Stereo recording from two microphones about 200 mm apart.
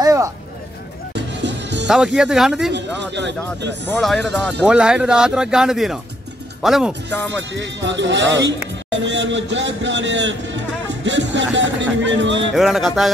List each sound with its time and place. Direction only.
0.0 s a sound: 15° right (ahead or behind)
1.1 s music: 60° right (ahead or behind)
1.9 s speech: 5° right (ahead or behind)
2.7 s speech: 60° right (ahead or behind)
3.8 s speech: 5° left (ahead or behind)
7.5 s speech: 65° right (ahead or behind)
12.5 s speech: centre (ahead or behind)